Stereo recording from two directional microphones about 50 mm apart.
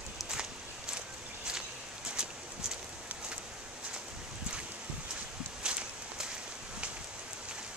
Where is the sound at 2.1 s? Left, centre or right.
Centre.